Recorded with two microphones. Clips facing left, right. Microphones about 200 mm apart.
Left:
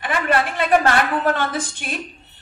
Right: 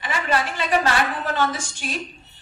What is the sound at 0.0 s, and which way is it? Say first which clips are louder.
A woman's voice: left 4 dB; 55° left (ahead or behind).